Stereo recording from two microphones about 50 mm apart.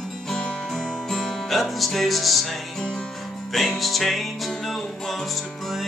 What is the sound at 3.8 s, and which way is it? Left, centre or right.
Music, centre.